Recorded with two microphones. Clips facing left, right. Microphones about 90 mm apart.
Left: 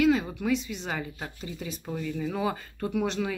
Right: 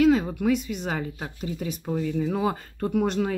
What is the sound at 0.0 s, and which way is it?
Speech, 40° right (ahead or behind).